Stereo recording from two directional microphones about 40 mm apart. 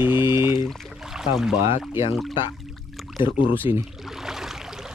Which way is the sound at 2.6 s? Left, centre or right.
Centre.